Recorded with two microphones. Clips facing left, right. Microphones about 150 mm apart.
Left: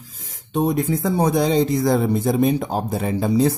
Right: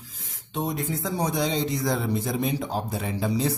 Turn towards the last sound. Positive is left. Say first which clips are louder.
# left 7 dB
turn(degrees=50)  # may be behind; listen again after turning